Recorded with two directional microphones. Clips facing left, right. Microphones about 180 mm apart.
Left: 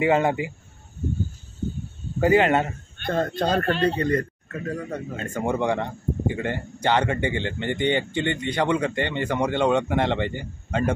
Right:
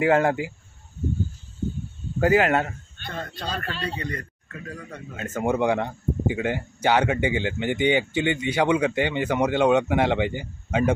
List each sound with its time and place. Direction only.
0.0 s speech: centre (ahead or behind)
2.1 s speech: centre (ahead or behind)
3.0 s speech: 50° left (ahead or behind)
5.1 s speech: 5° right (ahead or behind)